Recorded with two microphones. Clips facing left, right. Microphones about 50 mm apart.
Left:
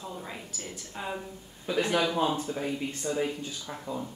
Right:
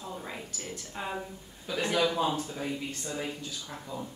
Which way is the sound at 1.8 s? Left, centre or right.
Left.